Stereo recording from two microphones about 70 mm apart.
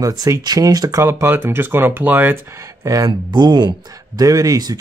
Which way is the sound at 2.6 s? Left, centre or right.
Right.